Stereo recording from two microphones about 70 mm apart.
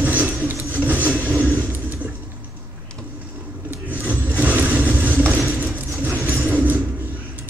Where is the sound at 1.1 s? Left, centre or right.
Right.